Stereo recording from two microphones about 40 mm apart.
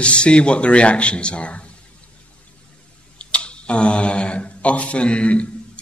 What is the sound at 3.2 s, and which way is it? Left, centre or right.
Speech, left.